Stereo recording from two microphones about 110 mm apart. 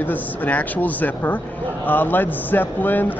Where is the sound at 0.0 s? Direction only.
15° left (ahead or behind).